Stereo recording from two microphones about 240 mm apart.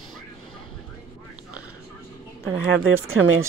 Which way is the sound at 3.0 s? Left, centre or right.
Right.